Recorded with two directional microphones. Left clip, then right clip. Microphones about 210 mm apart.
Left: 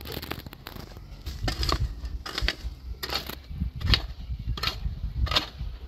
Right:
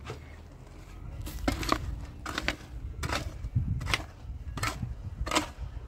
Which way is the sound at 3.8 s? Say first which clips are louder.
Left 6 dB; 10° right (ahead or behind).